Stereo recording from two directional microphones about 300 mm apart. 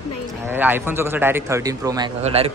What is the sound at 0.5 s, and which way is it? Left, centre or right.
A man's voice, centre.